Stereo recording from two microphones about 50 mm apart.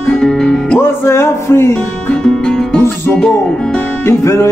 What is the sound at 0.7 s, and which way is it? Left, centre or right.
Music, left.